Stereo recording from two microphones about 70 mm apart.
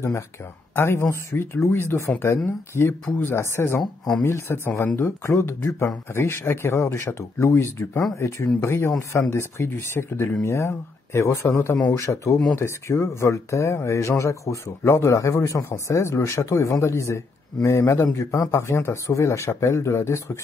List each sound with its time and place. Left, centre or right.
0.7 s a man's voice: left